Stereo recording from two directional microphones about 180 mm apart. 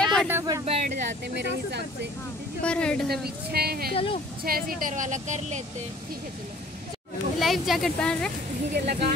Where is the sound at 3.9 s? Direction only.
30° left (ahead or behind).